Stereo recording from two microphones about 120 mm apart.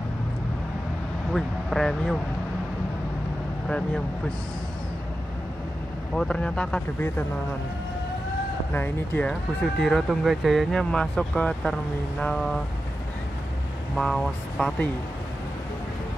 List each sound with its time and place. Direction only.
1.3 s speech: 5° left (ahead or behind)
3.6 s speech: 5° left (ahead or behind)
6.1 s speech: 10° left (ahead or behind)
8.7 s speech: 15° left (ahead or behind)
9.3 s speech: 5° left (ahead or behind)
13.9 s speech: 5° left (ahead or behind)